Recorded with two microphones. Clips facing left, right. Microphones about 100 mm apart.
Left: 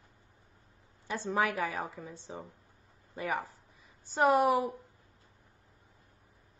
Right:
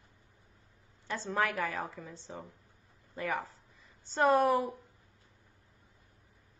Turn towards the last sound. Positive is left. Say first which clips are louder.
# left 1 dB
turn(degrees=15)  # may be behind; listen again after turning